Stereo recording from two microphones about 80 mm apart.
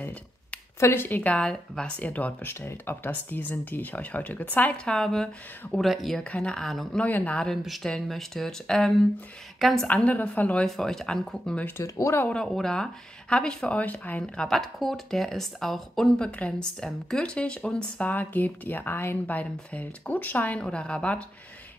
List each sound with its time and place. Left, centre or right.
0.7 s speech: left
4.9 s speech: centre
7.0 s speech: left
7.6 s a woman's voice: centre
10.0 s speech: centre
10.6 s speech: centre
11.8 s speech: left
12.3 s speech: centre
14.2 s speech: centre
18.1 s speech: left